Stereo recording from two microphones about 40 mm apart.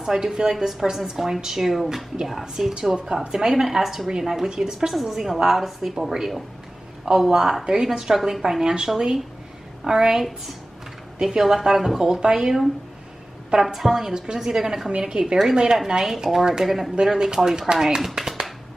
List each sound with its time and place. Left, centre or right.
0.0 s a woman's voice: centre
14.9 s a woman's voice: right